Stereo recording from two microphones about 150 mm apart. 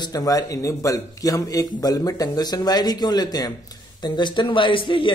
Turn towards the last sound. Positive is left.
turn(degrees=35)  # may be behind; listen again after turning